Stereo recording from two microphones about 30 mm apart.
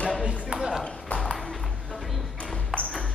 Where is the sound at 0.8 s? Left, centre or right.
Left.